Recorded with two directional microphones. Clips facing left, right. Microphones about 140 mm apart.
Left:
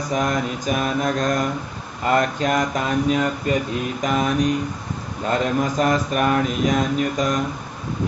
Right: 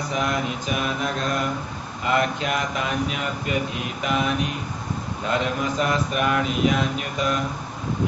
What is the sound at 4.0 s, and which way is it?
Mantra, 40° left (ahead or behind).